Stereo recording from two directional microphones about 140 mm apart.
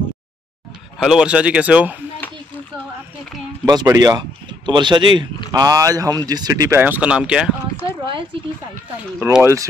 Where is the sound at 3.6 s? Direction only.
25° right (ahead or behind).